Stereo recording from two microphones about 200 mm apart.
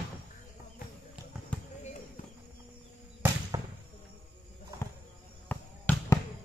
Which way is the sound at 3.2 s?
20° right (ahead or behind).